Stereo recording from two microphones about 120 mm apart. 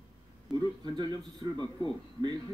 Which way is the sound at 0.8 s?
35° right (ahead or behind).